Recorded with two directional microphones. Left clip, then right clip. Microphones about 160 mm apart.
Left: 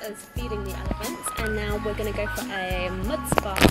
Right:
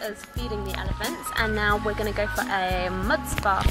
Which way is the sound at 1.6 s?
Centre (ahead or behind).